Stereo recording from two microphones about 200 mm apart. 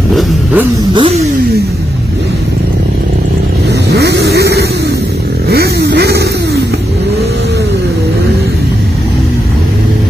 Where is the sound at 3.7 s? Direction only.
55° right (ahead or behind).